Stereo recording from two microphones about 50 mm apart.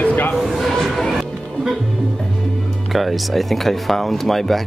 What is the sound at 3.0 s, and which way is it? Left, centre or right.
Speech, centre.